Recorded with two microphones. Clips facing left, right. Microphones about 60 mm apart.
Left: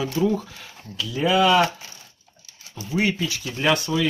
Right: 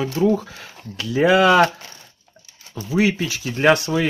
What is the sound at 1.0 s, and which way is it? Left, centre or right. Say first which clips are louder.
Speech: right 4 dB; right.